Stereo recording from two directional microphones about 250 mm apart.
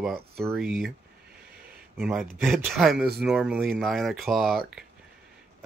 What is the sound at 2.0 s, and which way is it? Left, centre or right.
Speech, centre.